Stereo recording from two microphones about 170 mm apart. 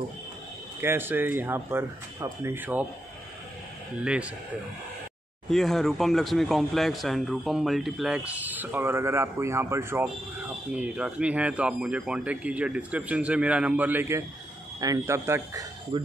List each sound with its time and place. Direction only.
0.7 s speech: 15° right (ahead or behind)
4.0 s speech: 5° right (ahead or behind)
5.5 s speech: centre (ahead or behind); by 15.6 s 15° right (ahead or behind)
15.9 s speech: 30° right (ahead or behind)